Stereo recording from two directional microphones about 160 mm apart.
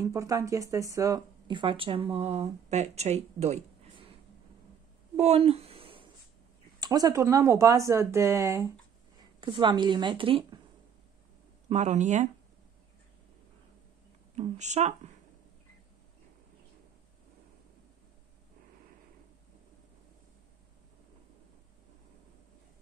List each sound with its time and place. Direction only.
0.0 s speech: 20° right (ahead or behind); by 4.1 s 45° right (ahead or behind)
5.1 s a sound: 40° right (ahead or behind)
6.8 s speech: 25° right (ahead or behind)
9.4 s speech: 30° right (ahead or behind)
11.7 s speech: 45° right (ahead or behind)
14.3 s speech: 45° right (ahead or behind)